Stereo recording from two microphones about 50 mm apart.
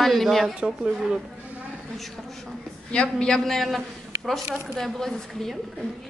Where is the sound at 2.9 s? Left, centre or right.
Left.